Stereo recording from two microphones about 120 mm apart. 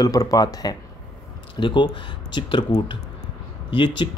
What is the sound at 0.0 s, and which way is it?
Speech, 30° left (ahead or behind).